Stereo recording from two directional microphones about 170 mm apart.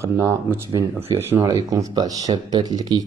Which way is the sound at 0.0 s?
15° right (ahead or behind).